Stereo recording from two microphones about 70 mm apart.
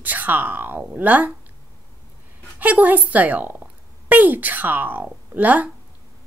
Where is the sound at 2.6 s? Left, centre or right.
Right.